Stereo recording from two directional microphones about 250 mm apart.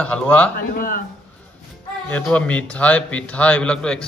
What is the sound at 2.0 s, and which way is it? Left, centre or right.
A man's voice, centre.